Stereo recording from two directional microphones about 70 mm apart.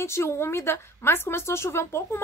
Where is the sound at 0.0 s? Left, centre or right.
Left.